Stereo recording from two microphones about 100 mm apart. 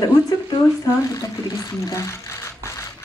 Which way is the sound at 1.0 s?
35° left (ahead or behind).